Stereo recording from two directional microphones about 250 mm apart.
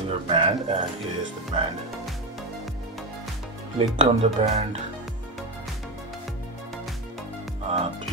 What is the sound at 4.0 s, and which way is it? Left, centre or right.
Speech, right.